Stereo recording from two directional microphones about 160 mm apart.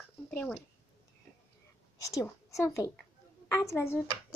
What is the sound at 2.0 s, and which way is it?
A woman's voice, 20° left (ahead or behind).